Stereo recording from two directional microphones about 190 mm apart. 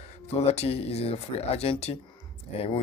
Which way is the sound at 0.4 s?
30° left (ahead or behind).